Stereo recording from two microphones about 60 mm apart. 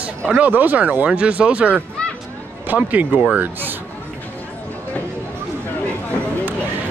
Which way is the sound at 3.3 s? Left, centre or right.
Right.